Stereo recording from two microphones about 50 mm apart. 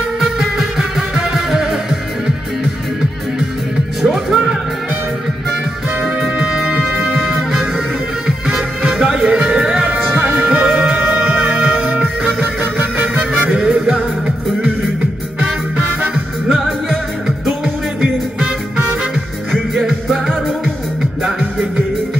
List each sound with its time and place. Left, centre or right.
0.2 s music: centre
4.0 s music: centre
6.0 s music: centre
12.4 s music: right
13.5 s music: centre
19.5 s music: centre